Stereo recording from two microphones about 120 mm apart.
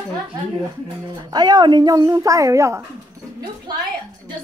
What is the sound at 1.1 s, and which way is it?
Speech, 35° right (ahead or behind).